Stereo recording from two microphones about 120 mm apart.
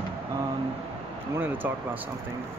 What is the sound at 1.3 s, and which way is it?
Speech, 15° right (ahead or behind).